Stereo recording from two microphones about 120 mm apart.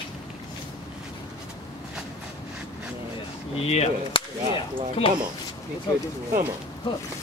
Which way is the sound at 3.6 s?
60° left (ahead or behind).